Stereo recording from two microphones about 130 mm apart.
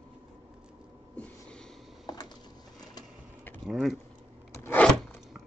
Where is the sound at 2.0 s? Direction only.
30° left (ahead or behind).